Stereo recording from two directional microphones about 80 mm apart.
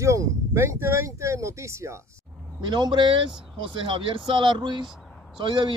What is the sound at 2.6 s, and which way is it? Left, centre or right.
Speech, right.